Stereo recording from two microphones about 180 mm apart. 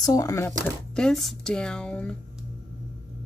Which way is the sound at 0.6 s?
5° left (ahead or behind).